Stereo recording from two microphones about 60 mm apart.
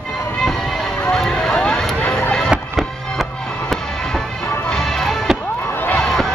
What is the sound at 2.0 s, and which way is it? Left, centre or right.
Music, centre.